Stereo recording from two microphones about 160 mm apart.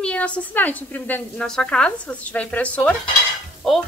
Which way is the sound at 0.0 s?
5° left (ahead or behind).